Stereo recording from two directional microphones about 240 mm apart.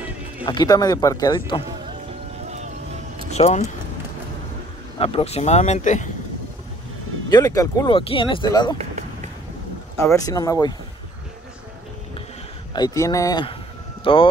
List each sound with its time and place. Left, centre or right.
0.5 s speech: centre
3.3 s speech: left
4.9 s speech: left
7.2 s speech: centre
10.0 s speech: centre
12.7 s speech: centre